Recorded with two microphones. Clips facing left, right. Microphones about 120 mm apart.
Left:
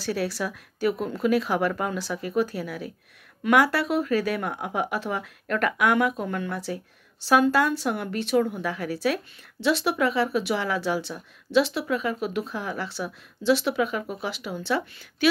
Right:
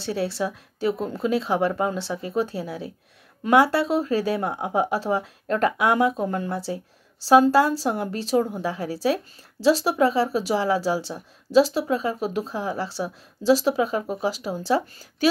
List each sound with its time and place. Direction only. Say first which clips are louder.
0.0 s a woman's voice: right 2 dB; 30° right (ahead or behind)